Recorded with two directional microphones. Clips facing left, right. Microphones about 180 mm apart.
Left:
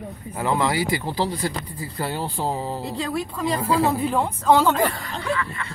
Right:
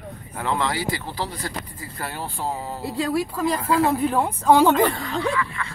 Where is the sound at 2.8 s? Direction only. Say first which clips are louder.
Right 3 dB; 5° right (ahead or behind).